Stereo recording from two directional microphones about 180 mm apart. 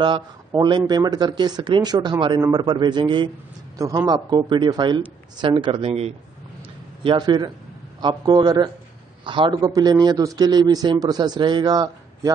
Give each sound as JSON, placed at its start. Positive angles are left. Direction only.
{"t": 0.5, "sound": "a man's voice", "side_deg": -25}